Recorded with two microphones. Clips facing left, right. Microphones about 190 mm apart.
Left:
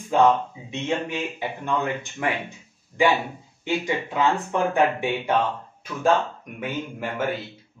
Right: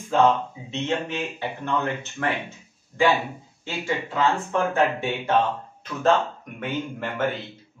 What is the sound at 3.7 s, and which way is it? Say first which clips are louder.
Speech: left 3 dB; 15° left (ahead or behind).